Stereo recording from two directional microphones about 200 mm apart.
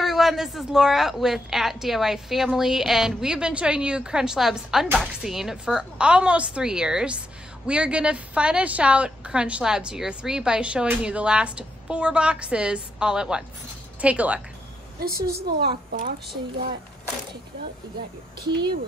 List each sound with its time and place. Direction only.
0.0 s a woman's voice: centre (ahead or behind)
15.2 s a woman's voice: 50° right (ahead or behind)